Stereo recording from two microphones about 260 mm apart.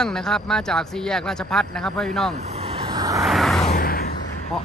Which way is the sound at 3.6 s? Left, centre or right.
Left.